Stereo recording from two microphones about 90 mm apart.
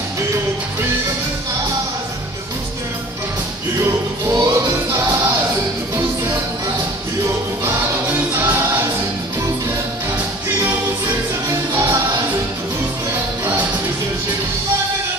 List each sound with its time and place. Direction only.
3.8 s music: 40° right (ahead or behind)
8.3 s music: 25° right (ahead or behind)
11.7 s music: 35° right (ahead or behind)